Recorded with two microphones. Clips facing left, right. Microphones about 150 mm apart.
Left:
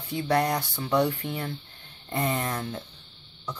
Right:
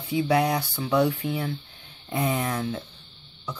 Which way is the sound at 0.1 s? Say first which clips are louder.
Right 2 dB; 5° right (ahead or behind).